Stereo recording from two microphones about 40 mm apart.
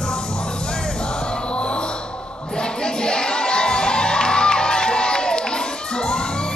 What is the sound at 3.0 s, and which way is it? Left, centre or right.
Crowd, centre.